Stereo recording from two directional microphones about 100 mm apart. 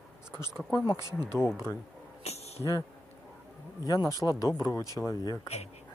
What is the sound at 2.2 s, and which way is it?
Tambourine, 90° left.